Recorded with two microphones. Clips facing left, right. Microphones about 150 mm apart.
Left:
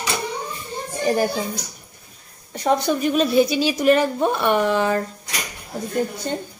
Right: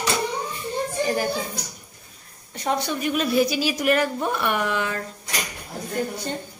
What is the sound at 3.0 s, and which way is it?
A woman's voice, 30° left (ahead or behind).